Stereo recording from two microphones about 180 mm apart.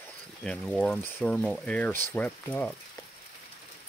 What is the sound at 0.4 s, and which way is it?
Speech, 5° left (ahead or behind).